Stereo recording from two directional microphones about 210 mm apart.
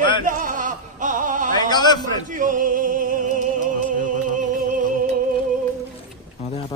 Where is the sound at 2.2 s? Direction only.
40° right (ahead or behind).